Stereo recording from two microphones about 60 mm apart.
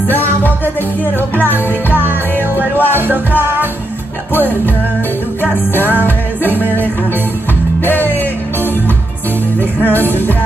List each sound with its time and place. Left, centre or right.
2.5 s music: right
4.3 s music: left
9.9 s music: left